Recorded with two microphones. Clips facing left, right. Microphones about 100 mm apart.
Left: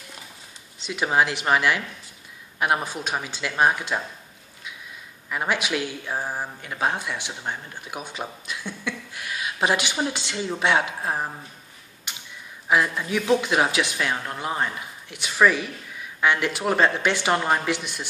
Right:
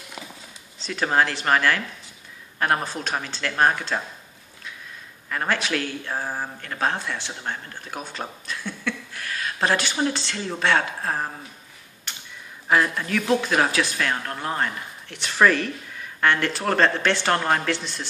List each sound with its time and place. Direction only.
0.8 s speech: 10° left (ahead or behind)
5.3 s speech: 15° left (ahead or behind)
12.1 s a sound: 10° left (ahead or behind)
12.6 s speech: 5° left (ahead or behind)